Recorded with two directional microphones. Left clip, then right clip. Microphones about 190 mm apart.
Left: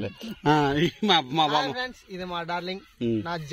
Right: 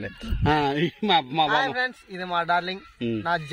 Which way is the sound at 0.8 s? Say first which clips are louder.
Even; 5° left (ahead or behind).